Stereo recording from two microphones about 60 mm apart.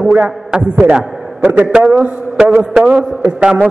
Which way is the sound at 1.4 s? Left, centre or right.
Right.